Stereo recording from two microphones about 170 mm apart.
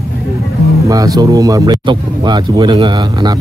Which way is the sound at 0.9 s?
20° right (ahead or behind).